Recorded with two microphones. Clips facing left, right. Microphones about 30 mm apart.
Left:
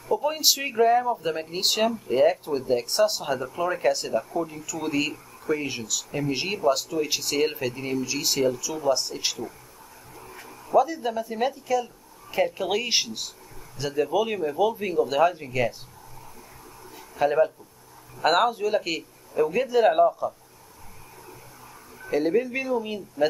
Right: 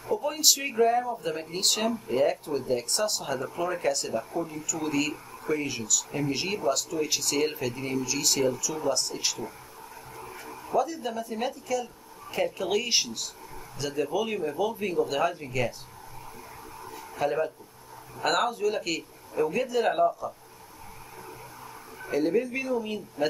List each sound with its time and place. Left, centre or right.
0.1 s speech: centre
10.4 s a sound: centre
10.7 s speech: centre
17.2 s speech: centre
22.1 s speech: centre
23.2 s a man's voice: centre